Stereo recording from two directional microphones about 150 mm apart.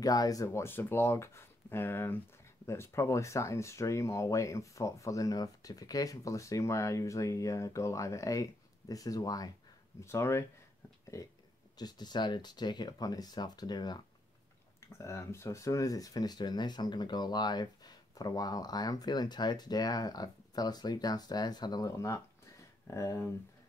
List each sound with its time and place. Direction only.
0.0 s speech: 25° left (ahead or behind)